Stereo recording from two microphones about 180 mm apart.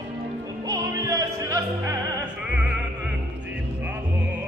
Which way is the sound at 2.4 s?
5° right (ahead or behind).